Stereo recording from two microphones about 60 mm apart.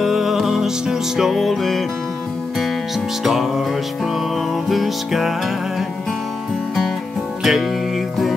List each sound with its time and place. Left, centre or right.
0.0 s music: centre
3.3 s music: centre
7.4 s music: centre